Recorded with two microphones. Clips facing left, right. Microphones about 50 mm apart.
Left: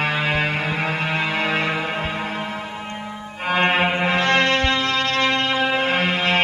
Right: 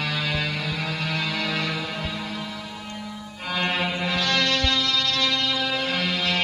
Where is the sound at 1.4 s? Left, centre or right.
Left.